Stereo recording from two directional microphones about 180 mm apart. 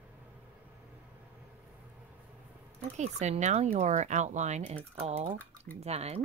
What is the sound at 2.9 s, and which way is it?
Speech, 40° right (ahead or behind).